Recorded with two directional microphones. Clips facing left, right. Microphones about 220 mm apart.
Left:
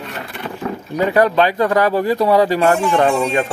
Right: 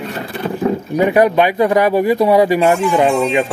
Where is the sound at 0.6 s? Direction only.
20° right (ahead or behind).